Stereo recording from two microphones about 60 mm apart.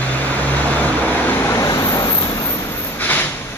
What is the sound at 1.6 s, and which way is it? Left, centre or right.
Vehicle, left.